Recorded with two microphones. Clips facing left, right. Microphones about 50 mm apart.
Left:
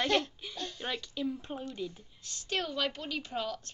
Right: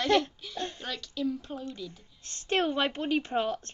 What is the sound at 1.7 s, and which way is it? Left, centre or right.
Speech, left.